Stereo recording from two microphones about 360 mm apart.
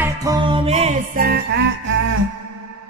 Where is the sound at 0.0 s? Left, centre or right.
Centre.